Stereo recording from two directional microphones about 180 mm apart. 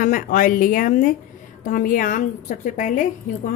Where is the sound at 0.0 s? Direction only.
50° left (ahead or behind).